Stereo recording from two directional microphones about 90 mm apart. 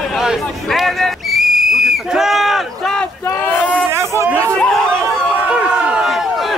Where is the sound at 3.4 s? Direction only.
20° left (ahead or behind).